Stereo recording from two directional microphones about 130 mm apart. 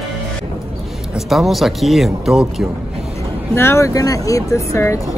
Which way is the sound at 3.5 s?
20° left (ahead or behind).